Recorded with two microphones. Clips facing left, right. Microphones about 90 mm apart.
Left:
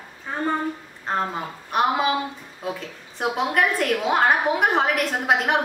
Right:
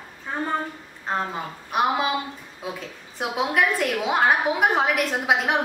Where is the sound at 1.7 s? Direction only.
Centre (ahead or behind).